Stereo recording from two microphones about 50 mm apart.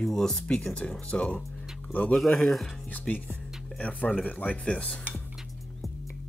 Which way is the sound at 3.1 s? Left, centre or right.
Centre.